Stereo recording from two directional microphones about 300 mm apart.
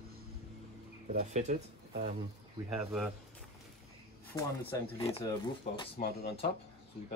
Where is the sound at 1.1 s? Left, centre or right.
Right.